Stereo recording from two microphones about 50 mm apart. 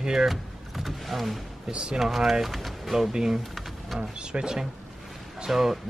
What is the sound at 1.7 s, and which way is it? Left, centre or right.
Speech, centre.